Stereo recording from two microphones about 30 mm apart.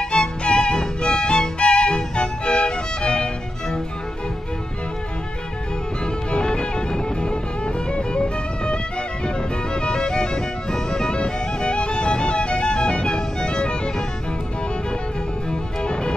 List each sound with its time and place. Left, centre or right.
0.0 s music: left
6.3 s music: left
15.5 s music: left